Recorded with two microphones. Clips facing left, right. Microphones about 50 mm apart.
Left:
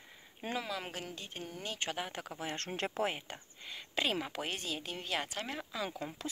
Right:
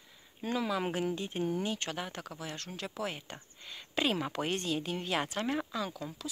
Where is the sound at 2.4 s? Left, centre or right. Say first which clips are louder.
Left 5 dB; left.